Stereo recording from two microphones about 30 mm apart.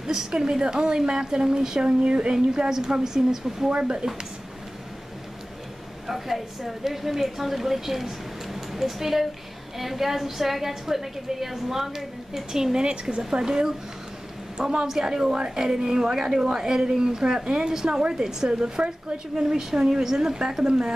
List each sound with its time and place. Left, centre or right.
0.0 s a woman's voice: centre
1.9 s a woman's voice: right
6.0 s a woman's voice: centre; by 16.2 s right
16.2 s a woman's voice: centre
18.5 s a woman's voice: right